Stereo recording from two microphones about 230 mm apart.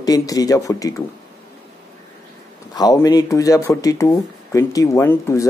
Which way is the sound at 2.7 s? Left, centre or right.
Centre.